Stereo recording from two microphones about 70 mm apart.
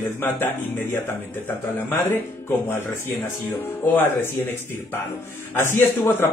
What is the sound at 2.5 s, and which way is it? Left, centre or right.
Speech, left.